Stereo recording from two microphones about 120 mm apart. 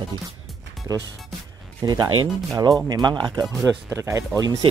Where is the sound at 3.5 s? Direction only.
5° left (ahead or behind).